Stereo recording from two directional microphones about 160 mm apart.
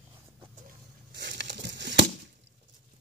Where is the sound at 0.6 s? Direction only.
90° right.